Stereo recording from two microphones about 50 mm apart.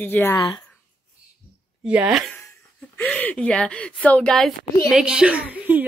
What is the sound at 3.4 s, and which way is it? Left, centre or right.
Speech, left.